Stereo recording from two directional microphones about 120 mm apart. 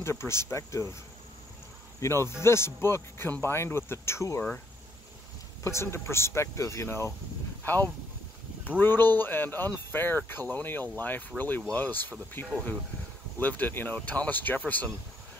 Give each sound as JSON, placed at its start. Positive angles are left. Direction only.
{"t": 0.0, "sound": "speech", "side_deg": 20}
{"t": 2.0, "sound": "speech", "side_deg": 20}
{"t": 5.6, "sound": "speech", "side_deg": 25}